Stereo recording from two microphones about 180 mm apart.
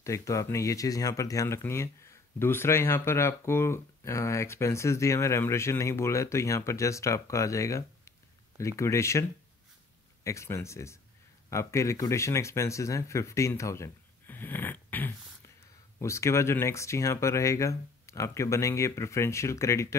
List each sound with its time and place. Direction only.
0.0 s speech: 15° left (ahead or behind)
10.2 s speech: 15° left (ahead or behind)